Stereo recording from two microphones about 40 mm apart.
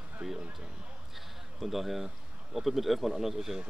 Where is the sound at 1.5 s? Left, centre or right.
Centre.